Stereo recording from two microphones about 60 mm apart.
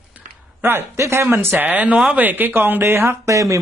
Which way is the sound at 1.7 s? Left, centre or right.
Right.